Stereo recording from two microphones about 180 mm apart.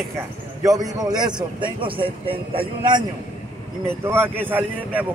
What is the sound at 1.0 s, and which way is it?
Speech, 20° right (ahead or behind).